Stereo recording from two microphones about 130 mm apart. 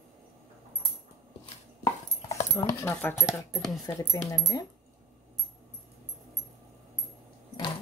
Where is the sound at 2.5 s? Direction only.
20° left (ahead or behind).